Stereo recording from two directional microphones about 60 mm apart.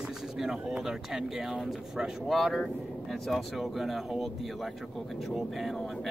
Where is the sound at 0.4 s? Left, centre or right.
Centre.